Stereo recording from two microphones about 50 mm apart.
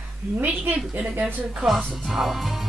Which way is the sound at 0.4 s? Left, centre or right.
Right.